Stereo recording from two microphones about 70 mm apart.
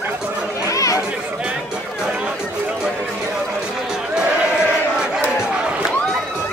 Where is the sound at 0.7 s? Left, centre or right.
Left.